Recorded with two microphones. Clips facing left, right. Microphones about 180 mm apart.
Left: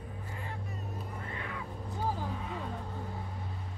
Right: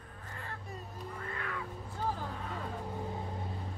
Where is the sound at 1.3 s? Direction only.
20° left (ahead or behind).